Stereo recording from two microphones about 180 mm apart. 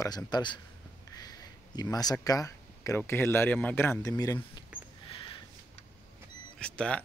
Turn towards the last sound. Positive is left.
turn(degrees=5)  # may be behind; listen again after turning